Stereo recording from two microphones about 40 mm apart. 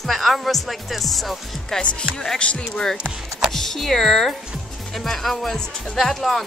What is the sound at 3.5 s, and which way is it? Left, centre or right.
Speech, centre.